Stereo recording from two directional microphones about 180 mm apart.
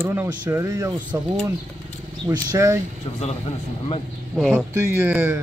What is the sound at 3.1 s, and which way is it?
Speech, 35° left (ahead or behind).